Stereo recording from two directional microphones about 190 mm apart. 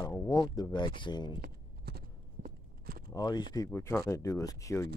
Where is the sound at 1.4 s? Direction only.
55° right (ahead or behind).